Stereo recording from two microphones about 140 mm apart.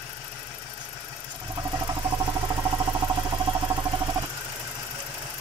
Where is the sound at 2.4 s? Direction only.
25° right (ahead or behind).